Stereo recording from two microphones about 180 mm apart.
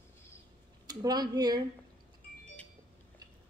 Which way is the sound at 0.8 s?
20° right (ahead or behind).